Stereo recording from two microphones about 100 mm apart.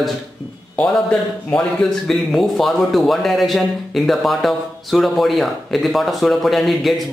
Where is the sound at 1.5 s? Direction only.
5° left (ahead or behind).